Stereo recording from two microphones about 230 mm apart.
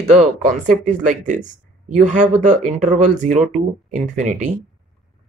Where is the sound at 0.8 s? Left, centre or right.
Right.